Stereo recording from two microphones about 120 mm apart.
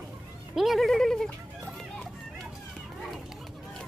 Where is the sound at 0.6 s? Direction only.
Centre (ahead or behind).